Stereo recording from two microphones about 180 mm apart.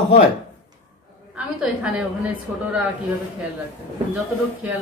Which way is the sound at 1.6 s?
5° right (ahead or behind).